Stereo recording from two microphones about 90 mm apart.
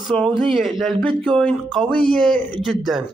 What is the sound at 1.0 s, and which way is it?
Speech, 10° left (ahead or behind).